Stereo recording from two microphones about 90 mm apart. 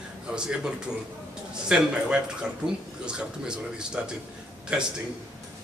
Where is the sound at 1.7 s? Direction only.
10° right (ahead or behind).